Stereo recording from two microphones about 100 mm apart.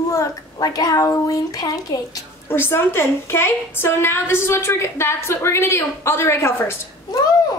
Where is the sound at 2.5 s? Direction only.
25° left (ahead or behind).